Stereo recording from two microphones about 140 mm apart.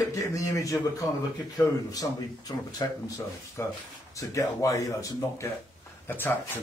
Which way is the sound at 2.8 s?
20° left (ahead or behind).